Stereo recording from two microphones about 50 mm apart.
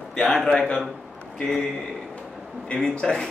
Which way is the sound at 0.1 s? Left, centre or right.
Centre.